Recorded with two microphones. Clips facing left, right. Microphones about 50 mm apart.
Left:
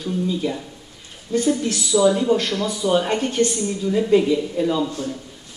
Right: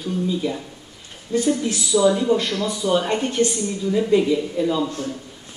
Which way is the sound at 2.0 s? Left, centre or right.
Centre.